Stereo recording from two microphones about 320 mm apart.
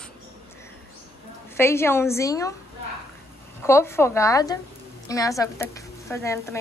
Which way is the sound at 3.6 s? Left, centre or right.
Centre.